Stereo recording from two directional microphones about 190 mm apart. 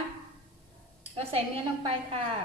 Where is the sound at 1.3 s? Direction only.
30° right (ahead or behind).